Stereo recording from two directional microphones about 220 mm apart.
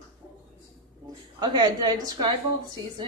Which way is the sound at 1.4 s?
20° right (ahead or behind).